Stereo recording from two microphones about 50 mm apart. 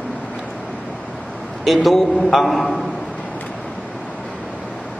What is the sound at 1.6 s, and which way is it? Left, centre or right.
A man's voice, centre.